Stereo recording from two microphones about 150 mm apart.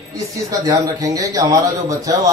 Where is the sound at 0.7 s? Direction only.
25° right (ahead or behind).